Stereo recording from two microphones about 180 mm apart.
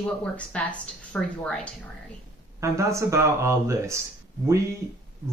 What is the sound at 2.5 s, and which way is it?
Speech, 15° right (ahead or behind).